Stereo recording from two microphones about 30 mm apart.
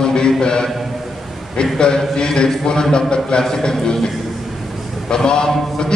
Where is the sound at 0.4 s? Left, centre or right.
Left.